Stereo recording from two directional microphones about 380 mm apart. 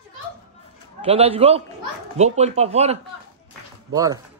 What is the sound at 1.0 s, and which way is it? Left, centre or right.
Speech, centre.